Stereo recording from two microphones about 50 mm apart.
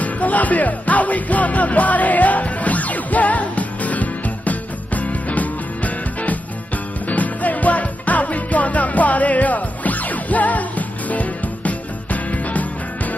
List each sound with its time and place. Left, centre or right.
0.0 s music: left